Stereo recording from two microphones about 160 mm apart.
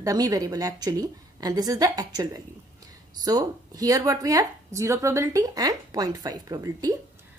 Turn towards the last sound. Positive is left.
turn(degrees=-20)  # may be behind; listen again after turning